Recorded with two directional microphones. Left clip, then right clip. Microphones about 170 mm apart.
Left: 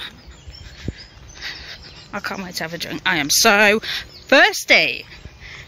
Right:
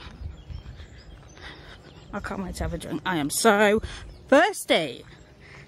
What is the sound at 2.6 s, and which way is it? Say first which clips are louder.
Speech: left 9 dB; 10° right (ahead or behind).